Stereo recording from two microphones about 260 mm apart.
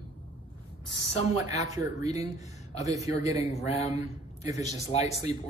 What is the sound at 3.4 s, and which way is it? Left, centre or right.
Speech, left.